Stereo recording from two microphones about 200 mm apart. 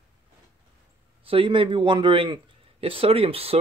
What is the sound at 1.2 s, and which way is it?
Speech, 25° right (ahead or behind).